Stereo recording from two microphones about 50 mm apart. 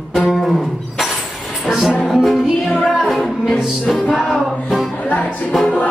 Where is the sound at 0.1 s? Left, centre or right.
Centre.